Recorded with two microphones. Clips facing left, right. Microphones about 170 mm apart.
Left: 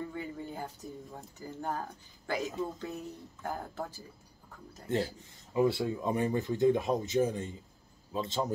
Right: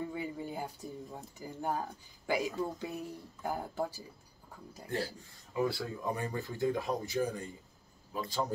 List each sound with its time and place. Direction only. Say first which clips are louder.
0.0 s speech: right 1 dB; 10° right (ahead or behind)
4.8 s speech: left 5 dB; 20° left (ahead or behind)